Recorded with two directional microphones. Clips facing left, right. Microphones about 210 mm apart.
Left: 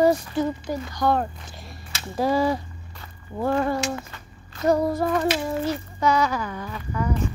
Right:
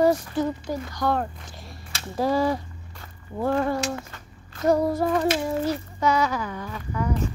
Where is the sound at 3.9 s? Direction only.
50° right (ahead or behind).